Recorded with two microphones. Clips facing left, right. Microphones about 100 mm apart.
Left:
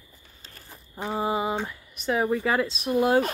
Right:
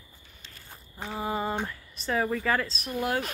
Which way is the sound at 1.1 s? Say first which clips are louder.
Left 5 dB; 30° left (ahead or behind).